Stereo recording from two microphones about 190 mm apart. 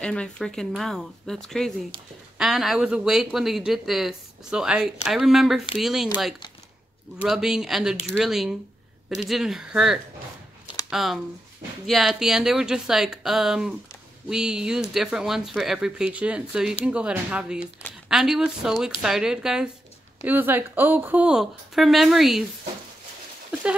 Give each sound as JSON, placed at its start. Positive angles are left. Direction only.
{"t": 0.0, "sound": "speech", "side_deg": 5}
{"t": 7.2, "sound": "speech", "side_deg": -5}